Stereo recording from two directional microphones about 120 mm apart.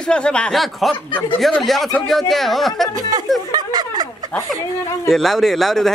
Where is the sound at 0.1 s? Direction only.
10° left (ahead or behind).